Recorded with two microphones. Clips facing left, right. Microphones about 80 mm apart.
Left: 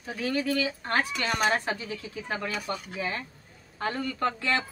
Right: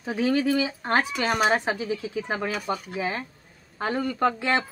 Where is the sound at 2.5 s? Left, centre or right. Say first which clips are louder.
Right 4 dB; centre.